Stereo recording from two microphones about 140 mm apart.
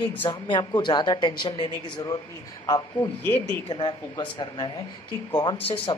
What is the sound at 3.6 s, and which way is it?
Speech, 35° left (ahead or behind).